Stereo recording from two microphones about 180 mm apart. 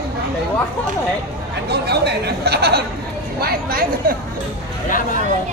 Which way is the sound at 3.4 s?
55° right (ahead or behind).